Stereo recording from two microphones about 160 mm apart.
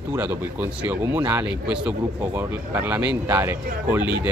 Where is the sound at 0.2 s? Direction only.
10° right (ahead or behind).